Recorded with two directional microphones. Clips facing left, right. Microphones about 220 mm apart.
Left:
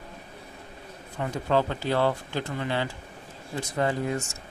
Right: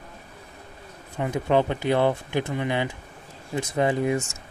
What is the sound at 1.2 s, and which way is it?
Speech, 20° right (ahead or behind).